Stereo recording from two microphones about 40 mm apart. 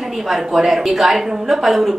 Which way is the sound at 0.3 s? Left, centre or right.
Centre.